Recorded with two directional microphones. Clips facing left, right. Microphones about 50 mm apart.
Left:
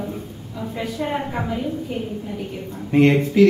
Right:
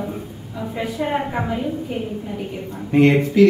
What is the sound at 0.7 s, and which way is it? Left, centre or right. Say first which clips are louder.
Speech: right 2 dB; centre.